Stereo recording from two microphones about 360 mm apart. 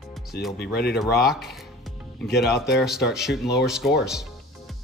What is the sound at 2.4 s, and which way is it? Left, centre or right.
Speech, centre.